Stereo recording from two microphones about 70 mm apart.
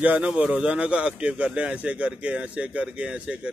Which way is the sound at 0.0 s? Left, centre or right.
Right.